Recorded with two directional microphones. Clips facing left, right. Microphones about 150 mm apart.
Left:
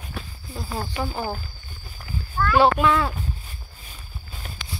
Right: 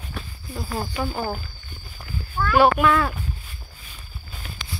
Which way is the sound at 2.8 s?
15° left (ahead or behind).